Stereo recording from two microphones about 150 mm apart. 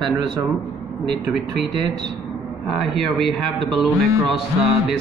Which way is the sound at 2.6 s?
Centre (ahead or behind).